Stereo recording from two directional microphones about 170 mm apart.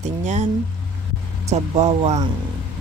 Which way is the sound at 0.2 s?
40° right (ahead or behind).